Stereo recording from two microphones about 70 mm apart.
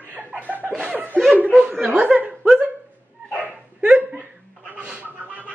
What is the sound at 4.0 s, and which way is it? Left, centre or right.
Hiccup, right.